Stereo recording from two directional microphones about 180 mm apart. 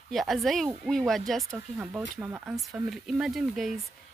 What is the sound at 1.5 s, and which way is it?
Speech, 10° right (ahead or behind).